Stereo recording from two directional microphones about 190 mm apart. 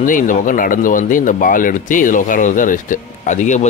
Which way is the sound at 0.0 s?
45° left (ahead or behind).